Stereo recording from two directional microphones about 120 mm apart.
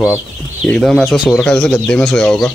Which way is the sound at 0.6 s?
5° left (ahead or behind).